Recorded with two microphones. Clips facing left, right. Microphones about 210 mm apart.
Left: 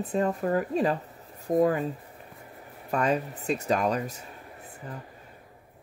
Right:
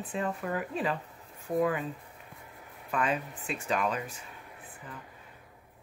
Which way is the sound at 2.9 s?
40° left (ahead or behind).